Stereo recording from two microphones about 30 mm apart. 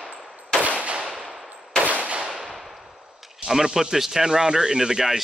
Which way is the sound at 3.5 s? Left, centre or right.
Centre.